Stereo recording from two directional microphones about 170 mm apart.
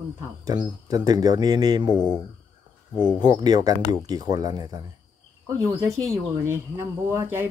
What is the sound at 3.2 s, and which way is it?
Speech, 25° right (ahead or behind).